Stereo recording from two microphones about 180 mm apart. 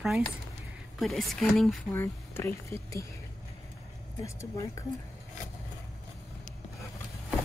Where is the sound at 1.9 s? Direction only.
15° left (ahead or behind).